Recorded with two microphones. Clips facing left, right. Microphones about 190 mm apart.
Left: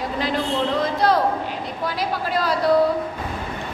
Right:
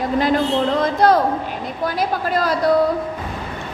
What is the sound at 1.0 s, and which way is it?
Speech, 45° right (ahead or behind).